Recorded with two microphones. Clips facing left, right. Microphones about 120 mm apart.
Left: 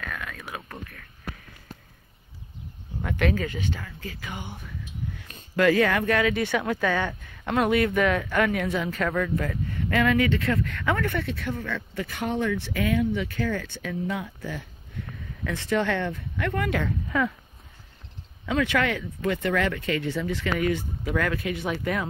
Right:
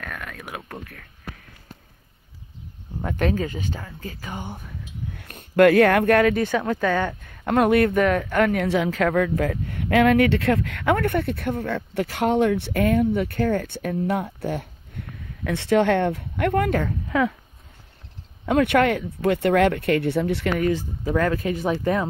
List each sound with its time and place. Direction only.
0.0 s a sound: 45° right (ahead or behind)
3.0 s speech: 35° right (ahead or behind)
5.1 s speech: 60° right (ahead or behind)
6.3 s speech: 40° right (ahead or behind)
7.4 s speech: 55° right (ahead or behind)
8.6 s speech: 85° right; by 14.7 s 60° right (ahead or behind)
15.4 s speech: 70° right (ahead or behind)
18.5 s speech: 55° right (ahead or behind)
20.6 s speech: 30° right (ahead or behind)